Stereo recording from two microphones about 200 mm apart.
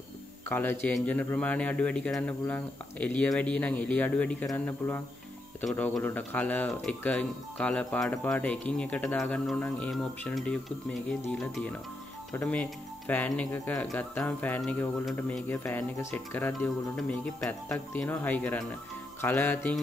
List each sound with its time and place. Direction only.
0.5 s speech: 10° left (ahead or behind)